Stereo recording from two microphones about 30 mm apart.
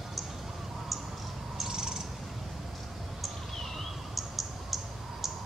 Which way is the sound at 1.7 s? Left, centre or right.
Right.